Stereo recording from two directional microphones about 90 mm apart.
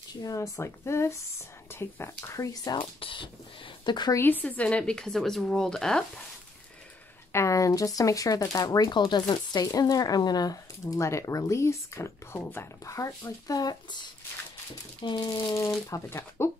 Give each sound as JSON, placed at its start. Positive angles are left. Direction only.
{"t": 0.1, "sound": "speech", "side_deg": 45}
{"t": 2.8, "sound": "speech", "side_deg": 80}
{"t": 4.2, "sound": "speech", "side_deg": 20}
{"t": 7.3, "sound": "speech", "side_deg": 35}
{"t": 12.8, "sound": "speech", "side_deg": 35}
{"t": 13.2, "sound": "speech", "side_deg": 45}
{"t": 15.0, "sound": "speech", "side_deg": 55}
{"t": 15.9, "sound": "speech", "side_deg": 30}